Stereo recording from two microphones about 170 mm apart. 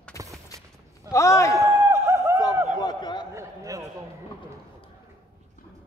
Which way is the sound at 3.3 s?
20° right (ahead or behind).